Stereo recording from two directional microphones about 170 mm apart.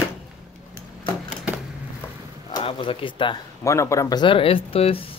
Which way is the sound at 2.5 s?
30° left (ahead or behind).